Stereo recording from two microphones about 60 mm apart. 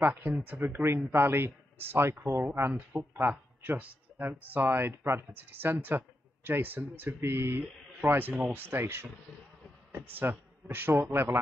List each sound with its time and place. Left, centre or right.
0.0 s speech: right
3.2 s speech: right
8.0 s speech: right